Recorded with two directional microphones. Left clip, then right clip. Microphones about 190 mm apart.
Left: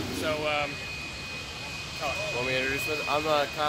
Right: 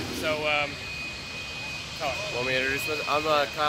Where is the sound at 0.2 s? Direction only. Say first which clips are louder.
Right 2 dB; 5° right (ahead or behind).